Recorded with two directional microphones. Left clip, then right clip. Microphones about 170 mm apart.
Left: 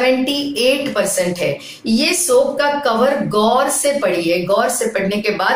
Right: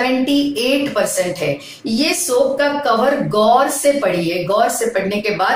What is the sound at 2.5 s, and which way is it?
Speech, 15° left (ahead or behind).